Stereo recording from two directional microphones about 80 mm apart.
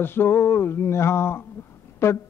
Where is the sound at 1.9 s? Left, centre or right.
Left.